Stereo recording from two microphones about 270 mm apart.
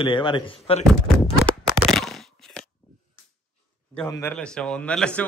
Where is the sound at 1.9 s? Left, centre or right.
Centre.